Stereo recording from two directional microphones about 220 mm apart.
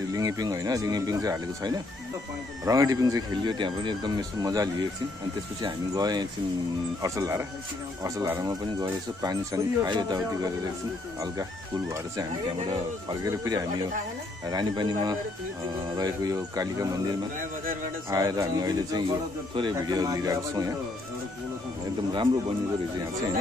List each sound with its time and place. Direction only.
0.1 s speech: 15° right (ahead or behind)
13.5 s speech: 20° right (ahead or behind)